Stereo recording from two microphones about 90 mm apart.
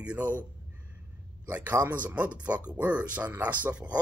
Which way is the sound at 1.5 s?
20° right (ahead or behind).